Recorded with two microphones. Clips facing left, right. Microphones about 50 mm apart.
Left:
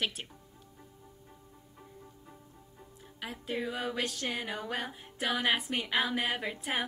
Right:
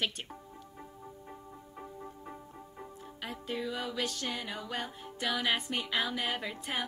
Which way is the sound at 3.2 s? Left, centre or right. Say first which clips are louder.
Left 1 dB; centre.